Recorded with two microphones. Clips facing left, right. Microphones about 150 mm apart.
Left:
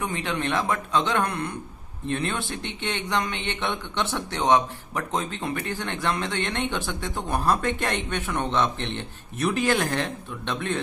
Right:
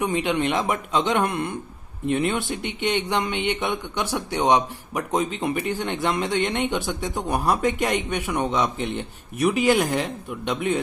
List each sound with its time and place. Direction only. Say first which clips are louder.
0.0 s speech: right 5 dB; 20° right (ahead or behind)